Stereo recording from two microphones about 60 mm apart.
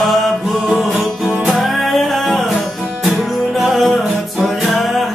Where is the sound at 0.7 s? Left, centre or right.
Centre.